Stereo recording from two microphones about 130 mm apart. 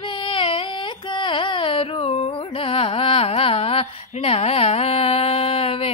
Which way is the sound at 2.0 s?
55° left (ahead or behind).